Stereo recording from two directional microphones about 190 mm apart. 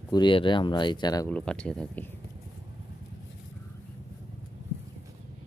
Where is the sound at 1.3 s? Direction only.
5° left (ahead or behind).